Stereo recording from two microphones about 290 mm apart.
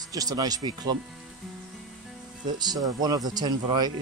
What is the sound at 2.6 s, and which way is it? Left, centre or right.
Speech, centre.